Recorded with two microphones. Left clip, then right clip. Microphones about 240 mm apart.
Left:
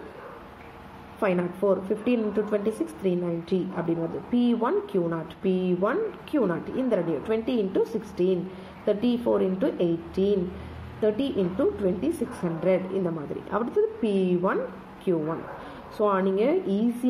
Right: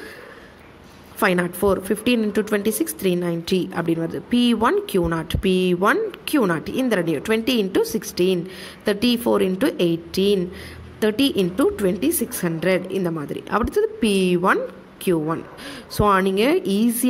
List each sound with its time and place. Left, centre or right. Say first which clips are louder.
1.2 s speech: right 5 dB; right